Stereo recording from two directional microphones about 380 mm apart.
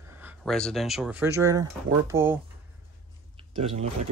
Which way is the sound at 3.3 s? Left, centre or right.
Centre.